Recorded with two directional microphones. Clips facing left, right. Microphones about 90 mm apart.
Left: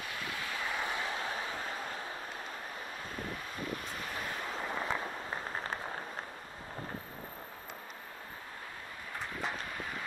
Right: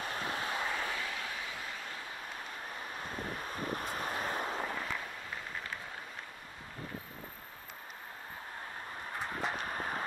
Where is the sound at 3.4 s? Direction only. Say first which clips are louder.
Right 2 dB; 40° right (ahead or behind).